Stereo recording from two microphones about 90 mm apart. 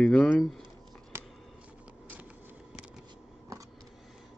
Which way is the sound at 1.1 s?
25° right (ahead or behind).